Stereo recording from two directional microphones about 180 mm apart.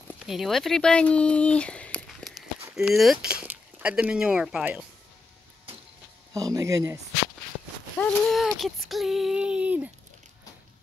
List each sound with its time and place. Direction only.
0.2 s speech: centre (ahead or behind)
6.3 s speech: 20° right (ahead or behind)
8.0 s speech: 5° left (ahead or behind)